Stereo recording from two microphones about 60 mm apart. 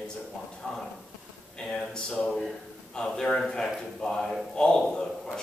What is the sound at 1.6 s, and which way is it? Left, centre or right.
A man's voice, centre.